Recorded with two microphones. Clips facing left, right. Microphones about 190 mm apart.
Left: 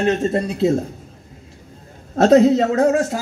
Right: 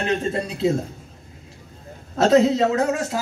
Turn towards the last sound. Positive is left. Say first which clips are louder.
# left 5 dB
turn(degrees=45)  # may be behind; listen again after turning